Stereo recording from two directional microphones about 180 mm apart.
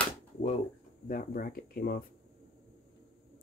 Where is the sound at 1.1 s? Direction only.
50° left (ahead or behind).